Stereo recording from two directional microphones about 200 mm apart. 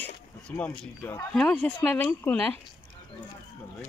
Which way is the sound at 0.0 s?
10° left (ahead or behind).